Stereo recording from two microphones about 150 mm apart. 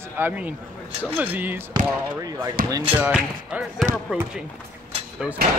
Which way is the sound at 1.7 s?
25° right (ahead or behind).